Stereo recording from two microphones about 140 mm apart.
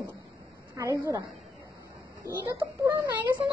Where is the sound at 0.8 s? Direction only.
20° right (ahead or behind).